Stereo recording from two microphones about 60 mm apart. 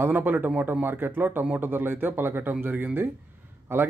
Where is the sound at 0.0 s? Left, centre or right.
Right.